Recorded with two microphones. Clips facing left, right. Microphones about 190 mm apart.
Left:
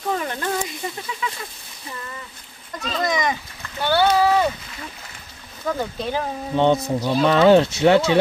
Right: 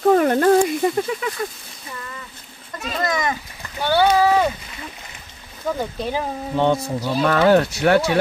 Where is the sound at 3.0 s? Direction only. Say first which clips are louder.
Even; centre (ahead or behind).